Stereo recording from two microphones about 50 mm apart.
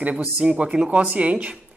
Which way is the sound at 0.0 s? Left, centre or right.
Right.